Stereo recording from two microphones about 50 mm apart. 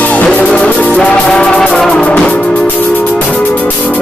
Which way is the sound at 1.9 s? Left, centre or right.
Left.